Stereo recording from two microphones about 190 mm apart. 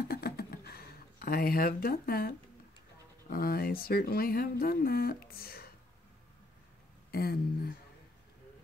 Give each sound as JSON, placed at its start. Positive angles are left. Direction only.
{"t": 0.1, "sound": "a sound", "side_deg": 55}
{"t": 3.3, "sound": "speech", "side_deg": 50}
{"t": 7.1, "sound": "speech", "side_deg": 55}